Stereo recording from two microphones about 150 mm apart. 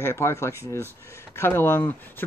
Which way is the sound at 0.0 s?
20° left (ahead or behind).